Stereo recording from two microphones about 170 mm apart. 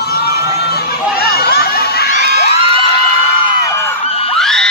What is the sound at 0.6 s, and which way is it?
Crowd, 70° left (ahead or behind).